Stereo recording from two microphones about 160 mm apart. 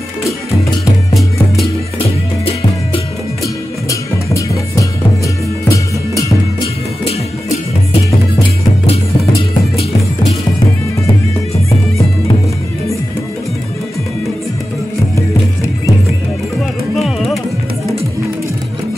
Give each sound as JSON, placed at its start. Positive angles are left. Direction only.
{"t": 3.9, "sound": "music", "side_deg": 20}
{"t": 16.9, "sound": "music", "side_deg": 0}